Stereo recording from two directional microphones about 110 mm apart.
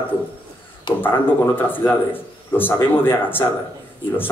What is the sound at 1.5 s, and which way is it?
A man's voice, 20° left (ahead or behind).